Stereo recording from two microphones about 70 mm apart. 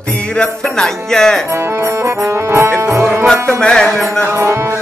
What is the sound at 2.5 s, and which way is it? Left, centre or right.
Music, right.